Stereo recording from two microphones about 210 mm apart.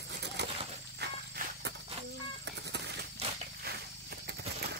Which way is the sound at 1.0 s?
50° right (ahead or behind).